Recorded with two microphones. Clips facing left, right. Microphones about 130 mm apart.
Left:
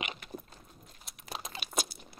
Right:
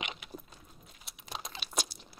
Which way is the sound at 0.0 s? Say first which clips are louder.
Left 2 dB; centre (ahead or behind).